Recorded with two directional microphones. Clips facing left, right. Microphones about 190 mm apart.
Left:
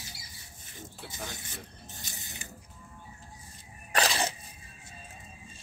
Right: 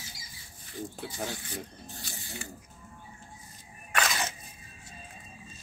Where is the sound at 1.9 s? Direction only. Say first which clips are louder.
Right 4 dB; 20° left (ahead or behind).